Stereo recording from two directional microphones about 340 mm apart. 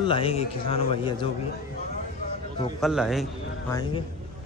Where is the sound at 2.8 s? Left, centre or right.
Centre.